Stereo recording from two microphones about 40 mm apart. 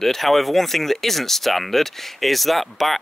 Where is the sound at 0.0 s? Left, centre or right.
Centre.